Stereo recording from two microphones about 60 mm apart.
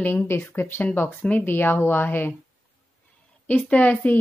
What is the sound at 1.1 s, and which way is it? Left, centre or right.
Speech, left.